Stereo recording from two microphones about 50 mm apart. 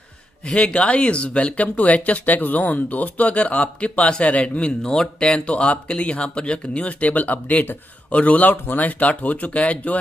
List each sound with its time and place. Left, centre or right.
0.5 s speech: left